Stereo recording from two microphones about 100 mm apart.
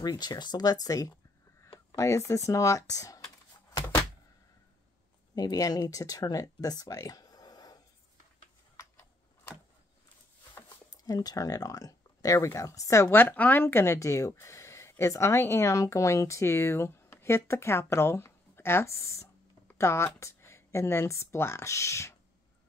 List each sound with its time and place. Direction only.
0.0 s speech: 40° left (ahead or behind)
5.3 s speech: 40° left (ahead or behind)
8.7 s typewriter: 30° left (ahead or behind)
10.5 s speech: 40° left (ahead or behind)